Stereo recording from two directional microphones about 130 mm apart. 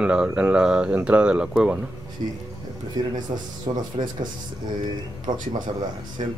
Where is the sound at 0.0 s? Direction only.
5° right (ahead or behind).